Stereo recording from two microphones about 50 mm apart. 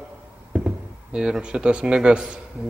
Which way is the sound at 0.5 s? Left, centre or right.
Centre.